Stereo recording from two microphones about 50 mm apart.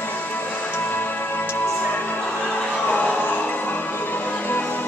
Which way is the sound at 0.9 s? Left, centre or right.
Left.